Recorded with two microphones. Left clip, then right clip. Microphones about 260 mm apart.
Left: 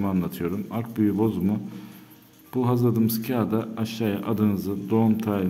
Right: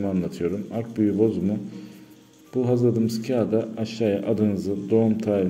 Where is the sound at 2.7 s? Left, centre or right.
Centre.